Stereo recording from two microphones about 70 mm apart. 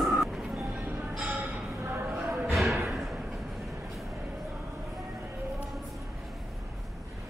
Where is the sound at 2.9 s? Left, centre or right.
Centre.